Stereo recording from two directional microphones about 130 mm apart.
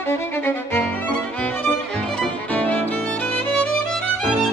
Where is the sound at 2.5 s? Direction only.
10° left (ahead or behind).